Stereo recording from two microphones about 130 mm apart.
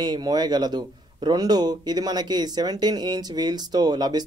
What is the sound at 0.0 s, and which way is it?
A man's voice, 35° right (ahead or behind).